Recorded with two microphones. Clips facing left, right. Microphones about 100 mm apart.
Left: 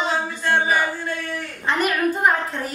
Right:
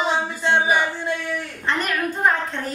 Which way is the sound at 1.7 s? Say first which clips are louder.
Left 3 dB; 5° left (ahead or behind).